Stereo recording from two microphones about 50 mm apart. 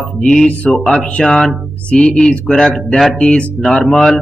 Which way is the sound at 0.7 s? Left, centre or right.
Centre.